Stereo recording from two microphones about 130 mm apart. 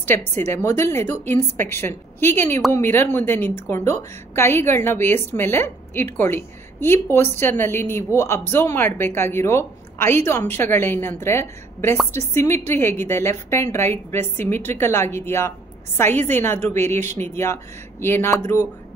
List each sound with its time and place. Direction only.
0.4 s a woman's voice: 20° left (ahead or behind)